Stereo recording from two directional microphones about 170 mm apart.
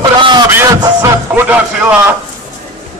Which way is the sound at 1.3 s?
5° right (ahead or behind).